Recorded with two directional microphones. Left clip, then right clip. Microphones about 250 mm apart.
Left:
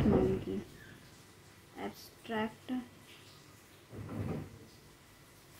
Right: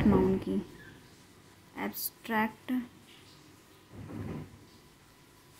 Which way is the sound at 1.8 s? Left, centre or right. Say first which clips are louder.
Right 6 dB; right.